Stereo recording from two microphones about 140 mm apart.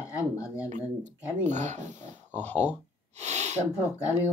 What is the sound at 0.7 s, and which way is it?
A man's voice, 60° right (ahead or behind).